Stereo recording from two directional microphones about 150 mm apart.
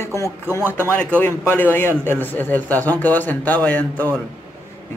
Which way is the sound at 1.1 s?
15° left (ahead or behind).